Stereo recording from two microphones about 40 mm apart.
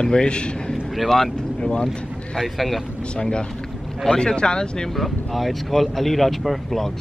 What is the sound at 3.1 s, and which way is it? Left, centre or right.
A man's voice, left.